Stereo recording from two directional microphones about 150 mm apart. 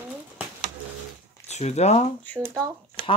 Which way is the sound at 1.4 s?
50° left (ahead or behind).